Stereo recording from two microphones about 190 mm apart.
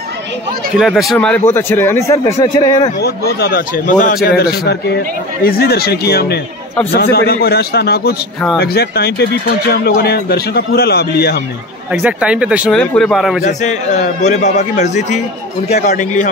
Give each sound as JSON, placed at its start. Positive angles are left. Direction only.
{"t": 0.7, "sound": "a man's voice", "side_deg": 0}
{"t": 3.0, "sound": "speech", "side_deg": 55}
{"t": 5.4, "sound": "speech", "side_deg": 50}
{"t": 11.9, "sound": "speech", "side_deg": -5}
{"t": 13.4, "sound": "a man's voice", "side_deg": 40}